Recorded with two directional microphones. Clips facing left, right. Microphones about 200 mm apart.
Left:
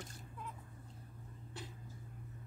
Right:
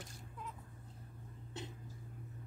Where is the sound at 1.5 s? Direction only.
20° right (ahead or behind).